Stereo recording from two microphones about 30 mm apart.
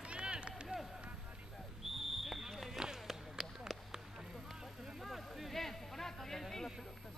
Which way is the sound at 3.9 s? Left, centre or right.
Centre.